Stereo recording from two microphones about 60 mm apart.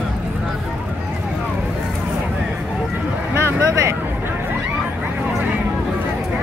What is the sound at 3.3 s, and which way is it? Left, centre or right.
Vehicle, right.